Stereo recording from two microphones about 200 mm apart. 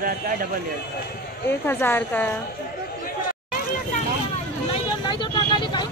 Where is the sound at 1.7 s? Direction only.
10° left (ahead or behind).